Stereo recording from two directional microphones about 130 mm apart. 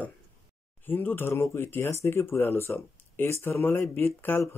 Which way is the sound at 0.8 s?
15° left (ahead or behind).